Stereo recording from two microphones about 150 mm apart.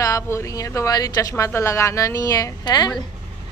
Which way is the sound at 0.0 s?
20° left (ahead or behind).